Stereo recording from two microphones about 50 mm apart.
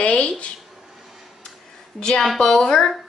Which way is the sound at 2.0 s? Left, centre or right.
Centre.